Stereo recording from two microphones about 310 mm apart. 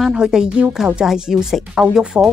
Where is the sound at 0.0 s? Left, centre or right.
Centre.